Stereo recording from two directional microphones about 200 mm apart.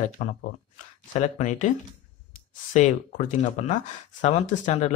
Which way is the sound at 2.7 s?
40° left (ahead or behind).